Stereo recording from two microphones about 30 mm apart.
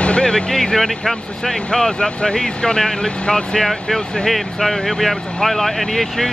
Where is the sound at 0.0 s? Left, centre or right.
Left.